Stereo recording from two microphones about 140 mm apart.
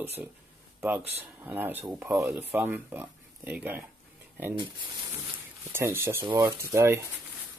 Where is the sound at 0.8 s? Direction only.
15° right (ahead or behind).